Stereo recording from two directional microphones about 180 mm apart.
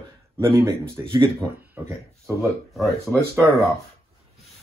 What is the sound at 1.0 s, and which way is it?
Speech, 30° right (ahead or behind).